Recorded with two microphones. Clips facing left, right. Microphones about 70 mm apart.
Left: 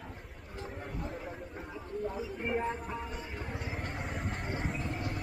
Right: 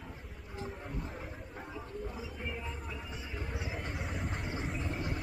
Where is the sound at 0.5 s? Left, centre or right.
Centre.